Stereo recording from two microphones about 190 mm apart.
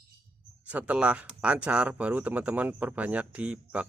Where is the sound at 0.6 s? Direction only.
5° right (ahead or behind).